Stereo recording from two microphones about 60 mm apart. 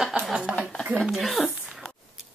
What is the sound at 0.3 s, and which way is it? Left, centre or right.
Speech, centre.